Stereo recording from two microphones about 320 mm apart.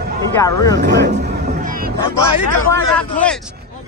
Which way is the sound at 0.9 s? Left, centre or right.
Right.